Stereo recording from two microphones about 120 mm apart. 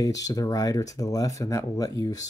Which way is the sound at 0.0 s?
30° left (ahead or behind).